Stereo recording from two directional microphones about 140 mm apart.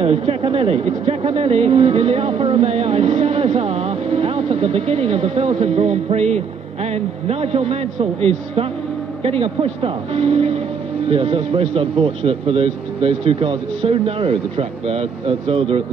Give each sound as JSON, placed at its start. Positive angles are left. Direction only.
{"t": 0.0, "sound": "speech", "side_deg": -40}